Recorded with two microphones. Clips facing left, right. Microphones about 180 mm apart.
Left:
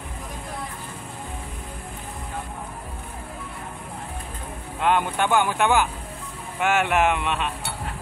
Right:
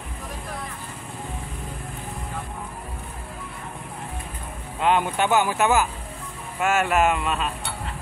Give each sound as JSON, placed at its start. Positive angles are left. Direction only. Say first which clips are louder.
{"t": 4.8, "sound": "speech", "louder": "right 1 dB", "side_deg": -10}